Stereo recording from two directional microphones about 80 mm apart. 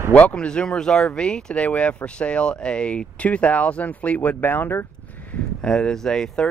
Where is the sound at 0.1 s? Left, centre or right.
Centre.